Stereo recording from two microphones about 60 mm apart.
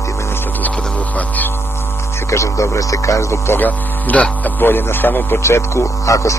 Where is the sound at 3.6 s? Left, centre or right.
Left.